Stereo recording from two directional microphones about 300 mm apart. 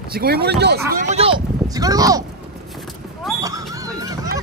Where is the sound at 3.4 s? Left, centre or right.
Centre.